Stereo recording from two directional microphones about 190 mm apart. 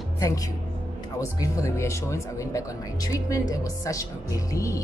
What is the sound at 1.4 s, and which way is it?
Speech, 15° left (ahead or behind).